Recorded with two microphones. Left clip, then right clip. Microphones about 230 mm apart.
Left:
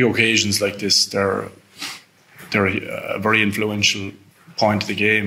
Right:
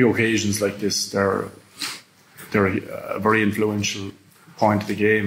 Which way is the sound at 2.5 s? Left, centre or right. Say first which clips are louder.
Left 2 dB; left.